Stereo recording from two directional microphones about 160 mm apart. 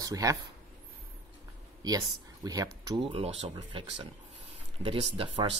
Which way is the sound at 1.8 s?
25° right (ahead or behind).